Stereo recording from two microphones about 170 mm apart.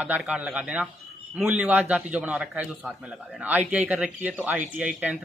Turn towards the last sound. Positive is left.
turn(degrees=-5)  # may be behind; listen again after turning